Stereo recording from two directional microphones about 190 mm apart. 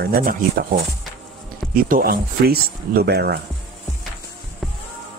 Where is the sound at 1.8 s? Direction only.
50° right (ahead or behind).